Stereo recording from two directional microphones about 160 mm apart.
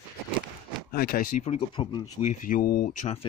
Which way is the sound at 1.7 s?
30° left (ahead or behind).